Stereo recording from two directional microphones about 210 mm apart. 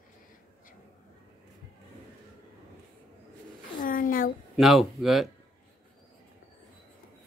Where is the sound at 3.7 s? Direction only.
40° left (ahead or behind).